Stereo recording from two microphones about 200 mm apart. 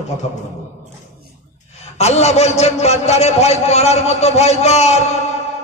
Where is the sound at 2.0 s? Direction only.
35° left (ahead or behind).